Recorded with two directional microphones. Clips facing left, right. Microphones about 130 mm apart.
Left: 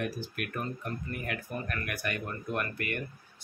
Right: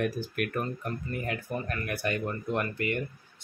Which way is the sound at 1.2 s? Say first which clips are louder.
Right 4 dB; 30° right (ahead or behind).